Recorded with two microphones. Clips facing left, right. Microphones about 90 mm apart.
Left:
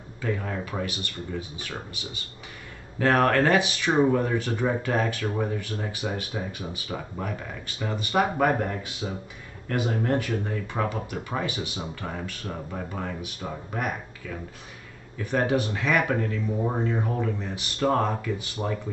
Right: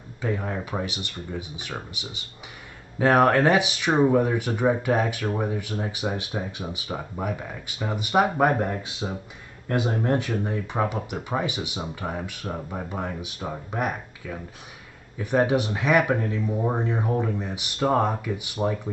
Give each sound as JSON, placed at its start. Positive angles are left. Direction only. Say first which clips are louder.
{"t": 0.2, "sound": "speech", "louder": "right 1 dB", "side_deg": -15}